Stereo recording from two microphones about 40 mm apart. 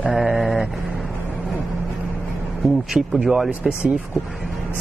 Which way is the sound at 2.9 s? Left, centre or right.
Right.